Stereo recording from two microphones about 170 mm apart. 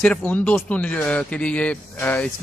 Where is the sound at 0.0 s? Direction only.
10° left (ahead or behind).